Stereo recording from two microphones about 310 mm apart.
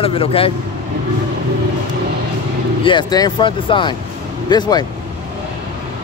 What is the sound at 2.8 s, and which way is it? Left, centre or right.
Speech, centre.